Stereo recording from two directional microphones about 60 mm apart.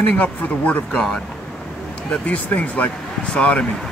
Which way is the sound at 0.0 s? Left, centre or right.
Left.